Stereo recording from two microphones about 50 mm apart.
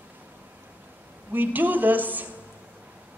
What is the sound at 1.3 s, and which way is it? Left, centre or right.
Speech, right.